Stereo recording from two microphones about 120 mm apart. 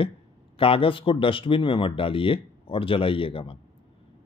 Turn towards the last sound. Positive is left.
turn(degrees=50)  # may be behind; listen again after turning